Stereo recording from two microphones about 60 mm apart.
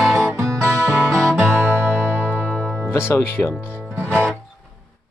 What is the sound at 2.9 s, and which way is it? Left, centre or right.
Speech, left.